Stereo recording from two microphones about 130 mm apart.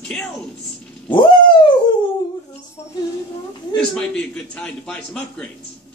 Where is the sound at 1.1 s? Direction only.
40° left (ahead or behind).